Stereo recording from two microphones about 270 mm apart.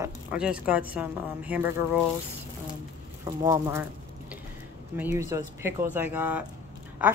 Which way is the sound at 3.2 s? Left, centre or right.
Centre.